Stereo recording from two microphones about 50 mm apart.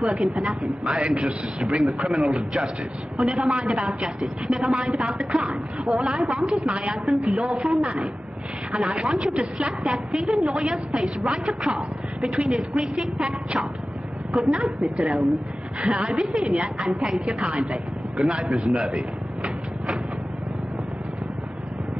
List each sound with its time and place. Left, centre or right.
0.1 s a woman's voice: centre
12.5 s a woman's voice: centre